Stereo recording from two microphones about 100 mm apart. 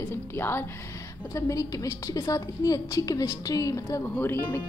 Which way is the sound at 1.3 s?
35° left (ahead or behind).